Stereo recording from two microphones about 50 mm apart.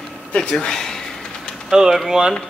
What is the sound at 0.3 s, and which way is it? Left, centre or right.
Pigeon, centre.